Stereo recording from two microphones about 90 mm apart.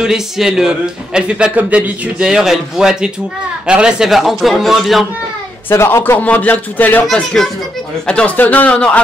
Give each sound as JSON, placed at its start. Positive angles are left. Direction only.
{"t": 0.0, "sound": "a man's voice", "side_deg": -5}
{"t": 5.7, "sound": "speech", "side_deg": 25}
{"t": 7.1, "sound": "a man's voice", "side_deg": 5}